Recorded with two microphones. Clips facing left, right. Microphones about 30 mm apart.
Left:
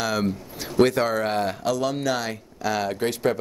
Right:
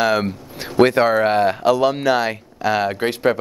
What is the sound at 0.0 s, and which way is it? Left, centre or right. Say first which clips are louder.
Speech: right 7 dB; right.